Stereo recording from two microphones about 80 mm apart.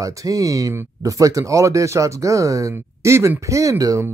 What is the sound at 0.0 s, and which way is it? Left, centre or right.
Speech, right.